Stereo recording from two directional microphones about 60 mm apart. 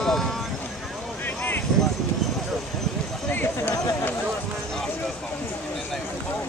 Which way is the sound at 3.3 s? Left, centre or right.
Left.